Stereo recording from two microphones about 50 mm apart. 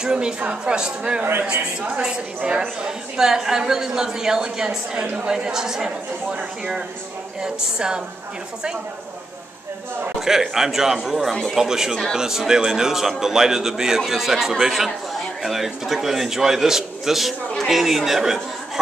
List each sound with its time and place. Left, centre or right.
0.0 s a man's voice: centre
7.4 s a man's voice: centre
10.1 s a man's voice: centre